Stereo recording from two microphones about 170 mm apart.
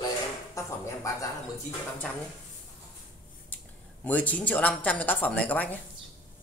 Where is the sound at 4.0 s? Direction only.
10° left (ahead or behind).